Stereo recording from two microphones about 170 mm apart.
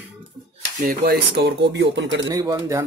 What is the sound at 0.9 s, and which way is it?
Speech, 70° right (ahead or behind).